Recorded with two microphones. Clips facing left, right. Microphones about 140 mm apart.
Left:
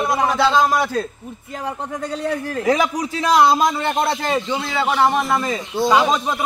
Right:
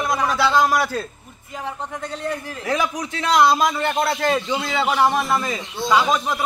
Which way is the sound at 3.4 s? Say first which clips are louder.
Even; 20° left (ahead or behind).